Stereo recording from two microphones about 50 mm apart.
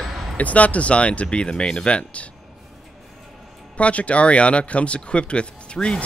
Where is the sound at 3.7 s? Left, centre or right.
Left.